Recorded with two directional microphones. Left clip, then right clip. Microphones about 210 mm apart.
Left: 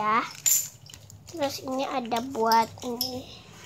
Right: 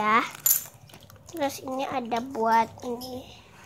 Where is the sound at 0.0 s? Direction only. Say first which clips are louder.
Right 2 dB; 10° right (ahead or behind).